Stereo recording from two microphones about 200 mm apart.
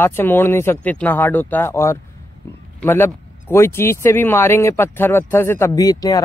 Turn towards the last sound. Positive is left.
turn(degrees=20)  # may be behind; listen again after turning